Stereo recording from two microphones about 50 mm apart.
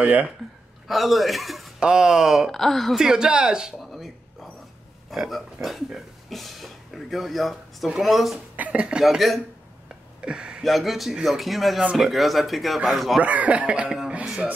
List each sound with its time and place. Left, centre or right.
0.8 s speech: centre
1.8 s speech: centre
2.5 s speech: centre
3.0 s speech: centre
3.9 s a sound: centre
5.1 s speech: centre
8.5 s speech: right
9.2 s speech: centre
10.2 s speech: centre
10.6 s speech: centre
13.2 s speech: right